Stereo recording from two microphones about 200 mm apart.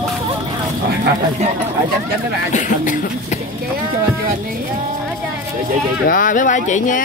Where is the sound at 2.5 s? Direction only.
40° left (ahead or behind).